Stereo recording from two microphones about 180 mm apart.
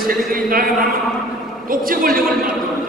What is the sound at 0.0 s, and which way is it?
Speech, 50° right (ahead or behind).